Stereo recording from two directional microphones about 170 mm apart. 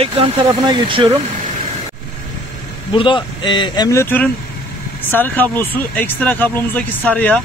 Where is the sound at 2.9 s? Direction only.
30° left (ahead or behind).